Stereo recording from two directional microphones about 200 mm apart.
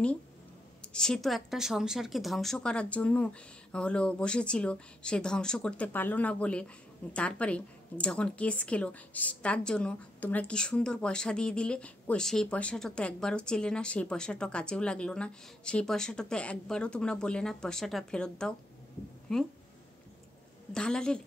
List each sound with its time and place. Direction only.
0.9 s a woman's voice: 5° left (ahead or behind)
20.7 s a woman's voice: 5° left (ahead or behind)